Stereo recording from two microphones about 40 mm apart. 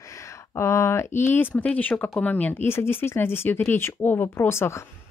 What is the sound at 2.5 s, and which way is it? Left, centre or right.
Speech, left.